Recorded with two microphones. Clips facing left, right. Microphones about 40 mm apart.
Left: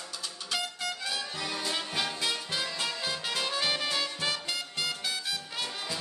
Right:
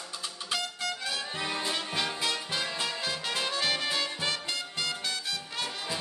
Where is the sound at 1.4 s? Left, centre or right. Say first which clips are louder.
Right 2 dB; right.